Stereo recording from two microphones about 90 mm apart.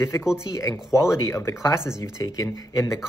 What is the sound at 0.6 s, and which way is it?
Speech, 35° left (ahead or behind).